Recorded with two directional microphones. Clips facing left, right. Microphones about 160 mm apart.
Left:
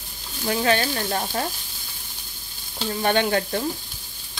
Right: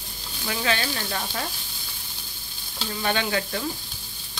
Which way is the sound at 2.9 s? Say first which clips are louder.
Left 5 dB; 45° left (ahead or behind).